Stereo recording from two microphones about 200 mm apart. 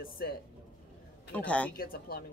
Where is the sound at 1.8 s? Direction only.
45° left (ahead or behind).